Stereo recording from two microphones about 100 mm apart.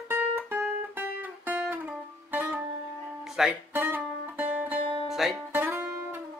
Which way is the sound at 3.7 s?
20° right (ahead or behind).